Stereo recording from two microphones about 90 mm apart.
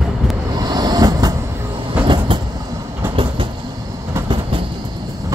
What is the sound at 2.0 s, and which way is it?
Vehicle, 65° right (ahead or behind).